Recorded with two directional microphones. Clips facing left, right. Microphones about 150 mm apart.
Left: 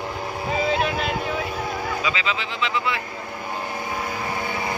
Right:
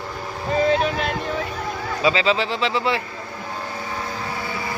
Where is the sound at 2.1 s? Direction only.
35° right (ahead or behind).